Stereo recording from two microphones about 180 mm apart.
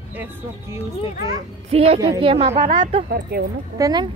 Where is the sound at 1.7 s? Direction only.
35° right (ahead or behind).